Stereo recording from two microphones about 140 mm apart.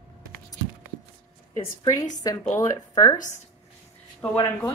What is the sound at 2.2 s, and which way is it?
Speech, 25° left (ahead or behind).